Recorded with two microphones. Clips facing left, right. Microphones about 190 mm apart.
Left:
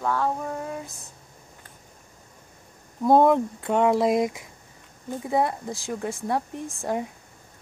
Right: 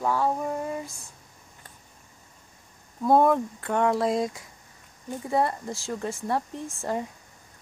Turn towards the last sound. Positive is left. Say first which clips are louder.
# left 2 dB
turn(degrees=15)  # may be behind; listen again after turning